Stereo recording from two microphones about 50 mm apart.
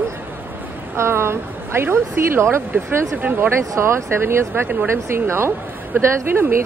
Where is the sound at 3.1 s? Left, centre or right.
Right.